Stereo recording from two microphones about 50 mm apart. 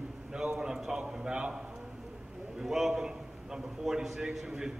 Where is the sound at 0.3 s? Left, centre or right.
Centre.